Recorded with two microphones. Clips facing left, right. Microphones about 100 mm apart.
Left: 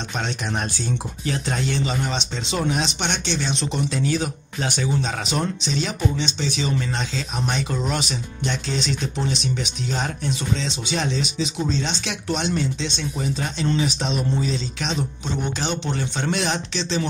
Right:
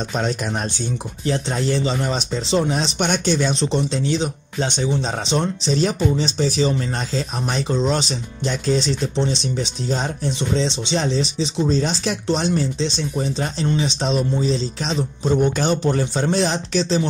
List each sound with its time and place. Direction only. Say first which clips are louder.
0.1 s speech: right 2 dB; 40° right (ahead or behind)
3.5 s speech: right 4 dB; 30° right (ahead or behind)
7.6 s speech: right 5 dB; 30° right (ahead or behind)
15.2 s speech: right 11 dB; 45° right (ahead or behind)